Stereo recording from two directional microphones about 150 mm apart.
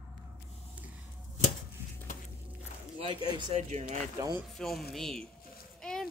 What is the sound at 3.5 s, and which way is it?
Speech, 50° right (ahead or behind).